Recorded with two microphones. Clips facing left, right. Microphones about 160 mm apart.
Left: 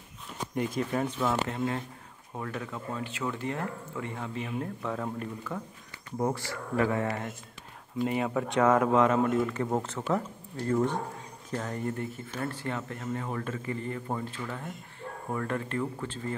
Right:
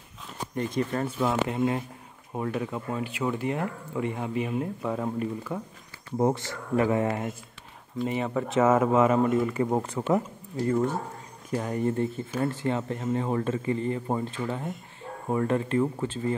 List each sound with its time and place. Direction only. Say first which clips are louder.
0.6 s speech: right 2 dB; 5° left (ahead or behind)
1.0 s speech: right 3 dB; 10° right (ahead or behind)
8.0 s speech: right 1 dB; centre (ahead or behind); by 16.3 s 20° right (ahead or behind)